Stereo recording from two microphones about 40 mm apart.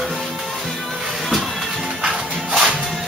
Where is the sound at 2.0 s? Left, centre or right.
Right.